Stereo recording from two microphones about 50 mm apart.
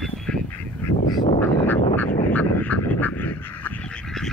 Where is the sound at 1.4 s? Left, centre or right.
Left.